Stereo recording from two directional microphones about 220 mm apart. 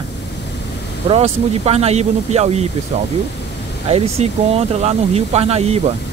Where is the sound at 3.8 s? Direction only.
30° right (ahead or behind).